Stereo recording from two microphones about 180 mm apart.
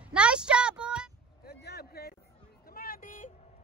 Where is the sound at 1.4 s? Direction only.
60° left (ahead or behind).